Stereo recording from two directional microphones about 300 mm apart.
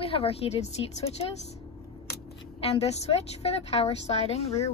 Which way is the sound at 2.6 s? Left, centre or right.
Centre.